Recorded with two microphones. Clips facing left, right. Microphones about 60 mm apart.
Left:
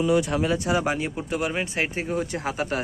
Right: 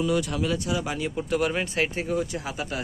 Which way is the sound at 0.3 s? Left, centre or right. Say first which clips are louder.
Left 4 dB; left.